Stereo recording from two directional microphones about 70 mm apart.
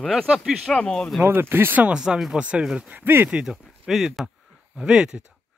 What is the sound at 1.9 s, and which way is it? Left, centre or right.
Speech, centre.